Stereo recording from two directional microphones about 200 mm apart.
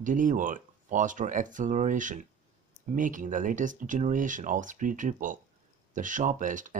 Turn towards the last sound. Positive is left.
turn(degrees=-40)  # may be behind; listen again after turning